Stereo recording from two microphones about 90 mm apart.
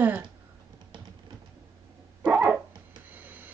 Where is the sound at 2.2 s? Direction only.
10° right (ahead or behind).